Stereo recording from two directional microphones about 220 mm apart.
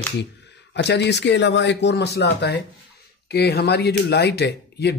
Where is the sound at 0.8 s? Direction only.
50° left (ahead or behind).